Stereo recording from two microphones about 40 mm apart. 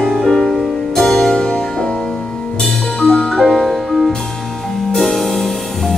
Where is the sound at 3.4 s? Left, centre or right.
Centre.